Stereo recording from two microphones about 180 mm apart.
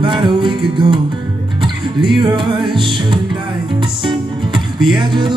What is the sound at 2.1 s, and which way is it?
Music, 25° right (ahead or behind).